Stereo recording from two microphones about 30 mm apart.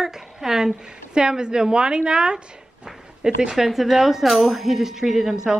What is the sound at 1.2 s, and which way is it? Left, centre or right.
A woman's voice, right.